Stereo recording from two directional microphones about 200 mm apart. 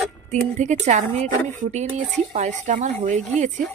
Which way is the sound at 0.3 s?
35° right (ahead or behind).